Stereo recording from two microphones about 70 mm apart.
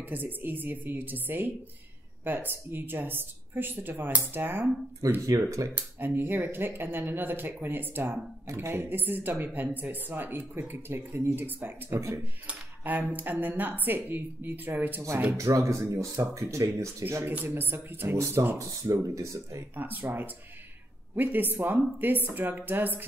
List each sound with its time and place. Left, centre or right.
0.0 s speech: right
5.2 s speech: right
5.8 s speech: right
15.3 s speech: right
17.3 s speech: right
18.6 s speech: right
19.7 s speech: right